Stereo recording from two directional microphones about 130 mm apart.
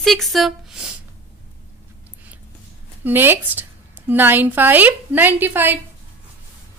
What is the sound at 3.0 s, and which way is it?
A woman's voice, 15° right (ahead or behind).